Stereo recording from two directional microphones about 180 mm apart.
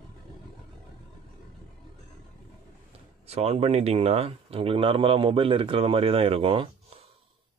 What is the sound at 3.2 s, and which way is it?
Speech, 35° right (ahead or behind).